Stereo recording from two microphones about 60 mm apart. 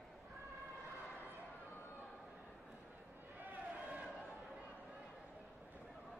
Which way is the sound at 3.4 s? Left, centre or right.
Right.